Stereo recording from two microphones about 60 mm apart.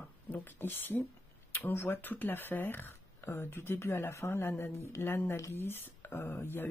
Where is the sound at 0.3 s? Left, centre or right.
Left.